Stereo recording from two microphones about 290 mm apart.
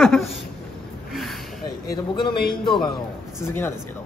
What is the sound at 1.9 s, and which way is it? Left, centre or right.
Speech, centre.